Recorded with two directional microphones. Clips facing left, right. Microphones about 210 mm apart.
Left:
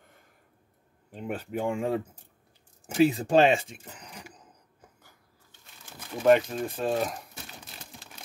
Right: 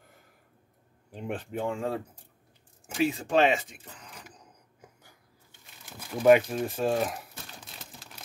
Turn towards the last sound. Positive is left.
turn(degrees=0)  # may be behind; listen again after turning